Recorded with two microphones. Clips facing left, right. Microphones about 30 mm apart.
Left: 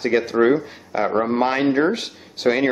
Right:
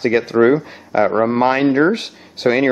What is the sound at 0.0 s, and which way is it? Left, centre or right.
Speech, centre.